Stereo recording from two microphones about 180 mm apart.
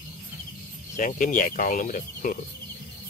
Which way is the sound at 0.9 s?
45° left (ahead or behind).